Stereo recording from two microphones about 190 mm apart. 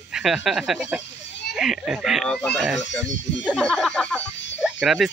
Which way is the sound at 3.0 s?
70° left (ahead or behind).